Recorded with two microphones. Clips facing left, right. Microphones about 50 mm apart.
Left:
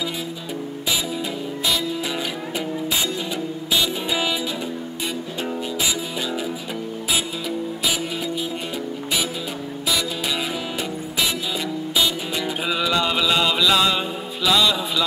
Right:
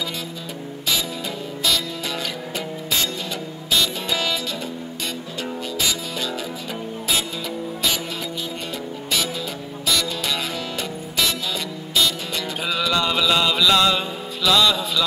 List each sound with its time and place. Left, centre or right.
3.7 s music: centre
10.8 s music: centre
12.6 s music: centre